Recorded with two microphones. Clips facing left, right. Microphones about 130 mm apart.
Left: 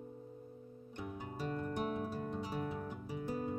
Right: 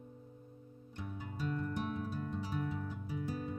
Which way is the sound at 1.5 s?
45° left (ahead or behind).